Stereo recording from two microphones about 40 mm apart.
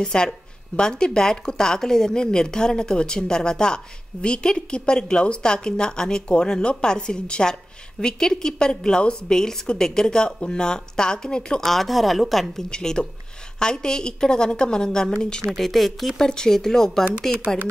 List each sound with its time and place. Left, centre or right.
0.0 s speech: centre
11.6 s a woman's voice: centre
12.6 s speech: centre
15.5 s a woman's voice: centre